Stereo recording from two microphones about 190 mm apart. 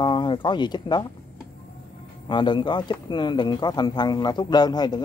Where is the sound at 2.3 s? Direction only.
25° left (ahead or behind).